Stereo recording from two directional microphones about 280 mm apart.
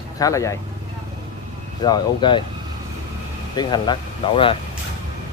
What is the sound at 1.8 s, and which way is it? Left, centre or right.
Speech, centre.